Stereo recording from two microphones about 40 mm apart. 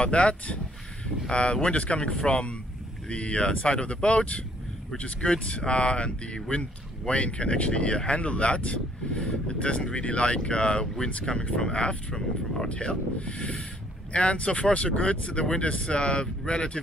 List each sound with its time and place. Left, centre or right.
0.0 s speech: left